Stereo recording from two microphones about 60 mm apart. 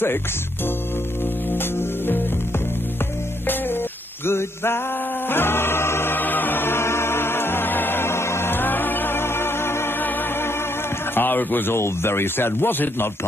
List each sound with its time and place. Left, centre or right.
1.6 s music: left
4.3 s music: left
11.1 s speech: left